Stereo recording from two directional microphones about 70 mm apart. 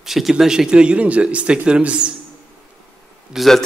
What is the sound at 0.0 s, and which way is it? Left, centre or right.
Speech, centre.